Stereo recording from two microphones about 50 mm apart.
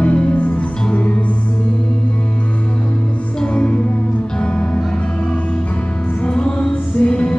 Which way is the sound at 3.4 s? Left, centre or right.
Left.